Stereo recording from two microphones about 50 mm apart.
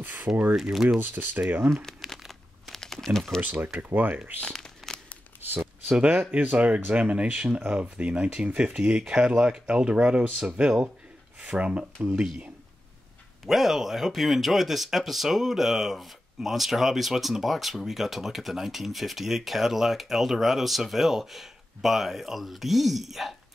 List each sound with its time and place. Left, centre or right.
0.0 s a sound: right
0.6 s speech: centre
0.8 s speech: right
2.2 s crumpling: centre
2.8 s typing: centre
3.4 s speech: right
4.4 s crumpling: centre
5.4 s a sound: right
5.9 s speech: right
11.5 s speech: right
13.5 s speech: centre